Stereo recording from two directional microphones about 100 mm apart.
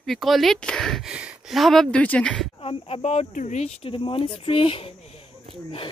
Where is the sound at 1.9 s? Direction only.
15° left (ahead or behind).